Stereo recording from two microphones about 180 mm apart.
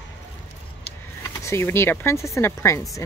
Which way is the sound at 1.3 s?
15° left (ahead or behind).